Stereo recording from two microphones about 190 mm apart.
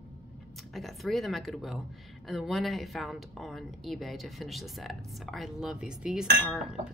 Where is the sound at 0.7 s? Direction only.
Centre (ahead or behind).